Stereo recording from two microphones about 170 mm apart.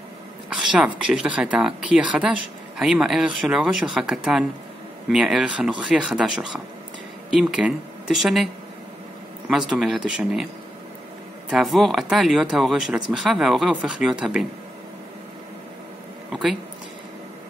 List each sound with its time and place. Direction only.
0.7 s speech: 5° right (ahead or behind)
9.5 s speech: centre (ahead or behind)
11.5 s speech: centre (ahead or behind)
16.3 s speech: centre (ahead or behind)